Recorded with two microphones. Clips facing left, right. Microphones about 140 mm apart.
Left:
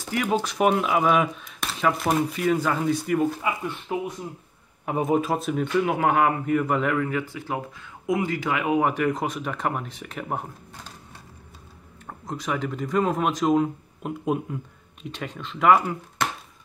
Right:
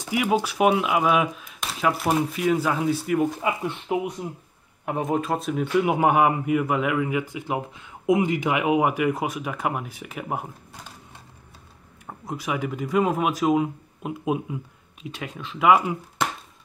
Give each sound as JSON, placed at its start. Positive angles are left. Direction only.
{"t": 0.0, "sound": "speech", "side_deg": -10}
{"t": 3.4, "sound": "speech", "side_deg": -20}
{"t": 4.8, "sound": "speech", "side_deg": 0}
{"t": 5.8, "sound": "speech", "side_deg": -15}
{"t": 12.1, "sound": "speech", "side_deg": -5}